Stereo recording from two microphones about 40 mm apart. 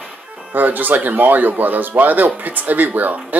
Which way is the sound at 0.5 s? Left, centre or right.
Right.